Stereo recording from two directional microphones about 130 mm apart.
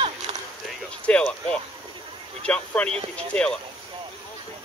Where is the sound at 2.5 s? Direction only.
10° left (ahead or behind).